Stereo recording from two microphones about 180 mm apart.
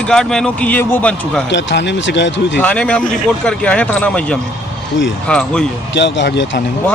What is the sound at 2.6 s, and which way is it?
Speech, 5° left (ahead or behind).